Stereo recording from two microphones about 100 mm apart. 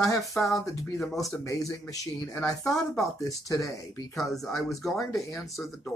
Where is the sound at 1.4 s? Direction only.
35° left (ahead or behind).